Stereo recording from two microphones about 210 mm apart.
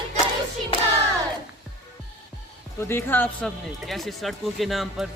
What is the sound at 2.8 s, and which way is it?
A man's voice, 10° left (ahead or behind).